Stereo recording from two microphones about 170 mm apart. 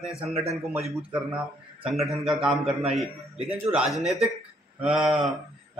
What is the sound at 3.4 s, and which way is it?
Speech, 35° right (ahead or behind).